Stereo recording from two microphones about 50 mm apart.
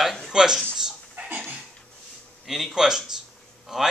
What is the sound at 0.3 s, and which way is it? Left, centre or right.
Speech, centre.